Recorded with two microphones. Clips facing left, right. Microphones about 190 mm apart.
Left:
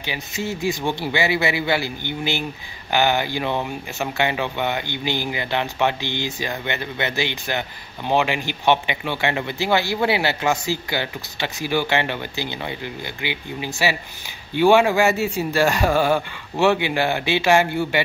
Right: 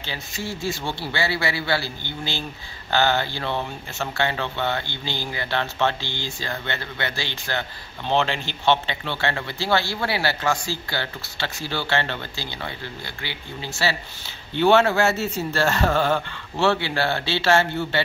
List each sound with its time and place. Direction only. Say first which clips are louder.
0.0 s speech: left 4 dB; 15° left (ahead or behind)